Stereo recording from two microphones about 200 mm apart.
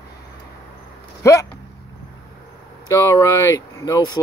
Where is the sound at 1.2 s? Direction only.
15° left (ahead or behind).